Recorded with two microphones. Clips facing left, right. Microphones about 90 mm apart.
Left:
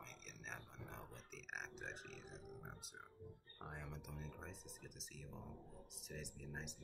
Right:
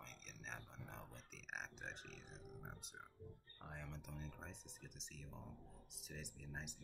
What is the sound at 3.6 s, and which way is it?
Speech, 10° left (ahead or behind).